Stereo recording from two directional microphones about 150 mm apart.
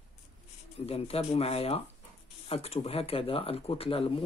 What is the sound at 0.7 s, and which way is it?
Speech, 40° left (ahead or behind).